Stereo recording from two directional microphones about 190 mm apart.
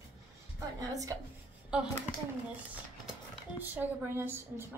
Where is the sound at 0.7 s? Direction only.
15° right (ahead or behind).